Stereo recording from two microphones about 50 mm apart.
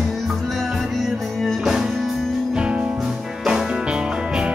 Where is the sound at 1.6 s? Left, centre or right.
Centre.